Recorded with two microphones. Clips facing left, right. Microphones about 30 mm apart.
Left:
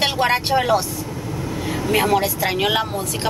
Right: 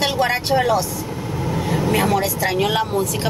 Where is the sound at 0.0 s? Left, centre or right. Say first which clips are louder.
Left 1 dB; centre.